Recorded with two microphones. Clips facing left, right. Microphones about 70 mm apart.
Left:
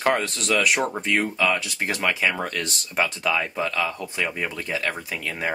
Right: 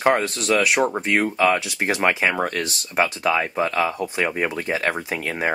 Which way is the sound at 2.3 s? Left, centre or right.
Centre.